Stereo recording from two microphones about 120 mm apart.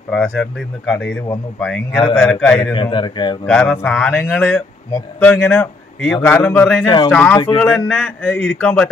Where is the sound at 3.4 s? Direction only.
10° left (ahead or behind).